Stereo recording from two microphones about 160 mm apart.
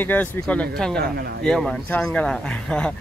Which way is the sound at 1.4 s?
5° left (ahead or behind).